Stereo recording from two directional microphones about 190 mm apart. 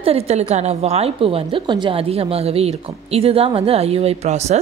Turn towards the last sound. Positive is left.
turn(degrees=-35)  # may be behind; listen again after turning